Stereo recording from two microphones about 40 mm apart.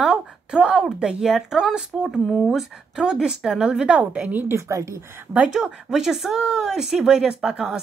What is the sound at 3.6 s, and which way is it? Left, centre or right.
Speech, right.